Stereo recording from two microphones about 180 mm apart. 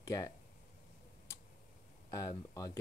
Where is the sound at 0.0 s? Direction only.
20° left (ahead or behind).